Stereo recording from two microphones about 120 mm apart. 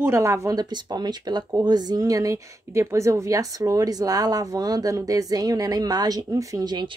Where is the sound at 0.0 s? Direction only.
20° right (ahead or behind).